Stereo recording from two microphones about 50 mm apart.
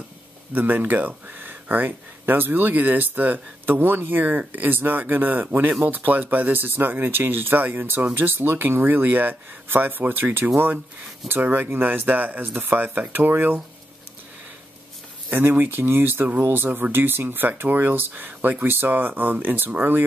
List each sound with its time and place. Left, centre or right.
0.6 s speech: right
15.2 s speech: right